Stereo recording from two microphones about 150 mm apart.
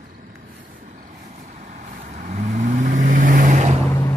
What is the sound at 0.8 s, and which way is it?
Vehicle, 55° right (ahead or behind).